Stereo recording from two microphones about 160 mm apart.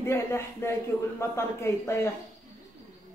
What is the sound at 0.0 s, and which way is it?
Speech, 15° left (ahead or behind).